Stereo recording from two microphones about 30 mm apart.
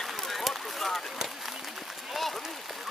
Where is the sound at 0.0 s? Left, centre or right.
Centre.